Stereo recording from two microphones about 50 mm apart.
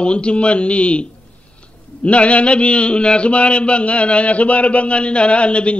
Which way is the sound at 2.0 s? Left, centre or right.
Left.